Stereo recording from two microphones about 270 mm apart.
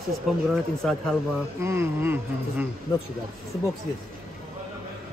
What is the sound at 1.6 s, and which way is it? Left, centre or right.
Speech, centre.